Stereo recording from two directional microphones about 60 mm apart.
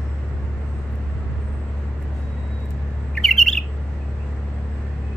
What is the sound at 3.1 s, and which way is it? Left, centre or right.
Bird, centre.